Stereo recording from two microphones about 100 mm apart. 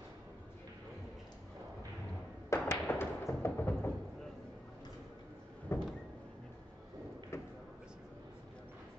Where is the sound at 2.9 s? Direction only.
25° left (ahead or behind).